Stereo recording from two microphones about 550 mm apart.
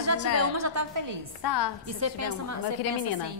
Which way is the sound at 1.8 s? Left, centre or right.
Right.